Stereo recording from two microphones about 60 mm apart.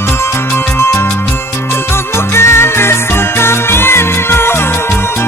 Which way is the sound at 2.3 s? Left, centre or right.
Left.